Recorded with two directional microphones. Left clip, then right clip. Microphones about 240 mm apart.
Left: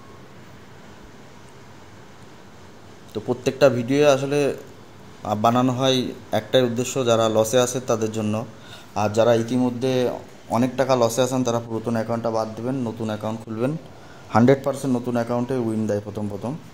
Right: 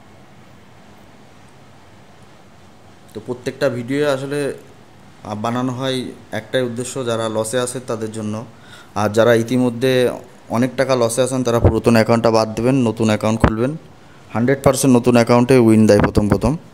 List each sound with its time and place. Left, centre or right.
3.1 s a man's voice: centre
8.9 s a man's voice: right
11.5 s speech: right
14.3 s a man's voice: centre
14.6 s speech: right